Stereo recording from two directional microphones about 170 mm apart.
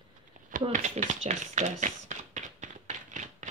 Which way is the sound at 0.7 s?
45° right (ahead or behind).